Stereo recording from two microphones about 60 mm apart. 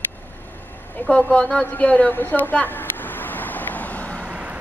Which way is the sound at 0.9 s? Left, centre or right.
Left.